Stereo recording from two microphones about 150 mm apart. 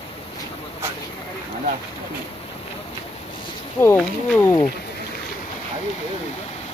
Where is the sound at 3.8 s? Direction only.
10° left (ahead or behind).